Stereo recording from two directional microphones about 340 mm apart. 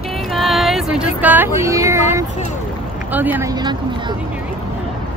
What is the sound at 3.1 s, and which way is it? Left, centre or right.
Speech, centre.